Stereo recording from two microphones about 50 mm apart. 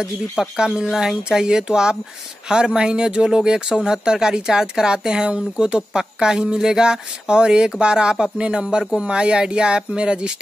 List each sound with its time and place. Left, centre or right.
0.0 s speech: centre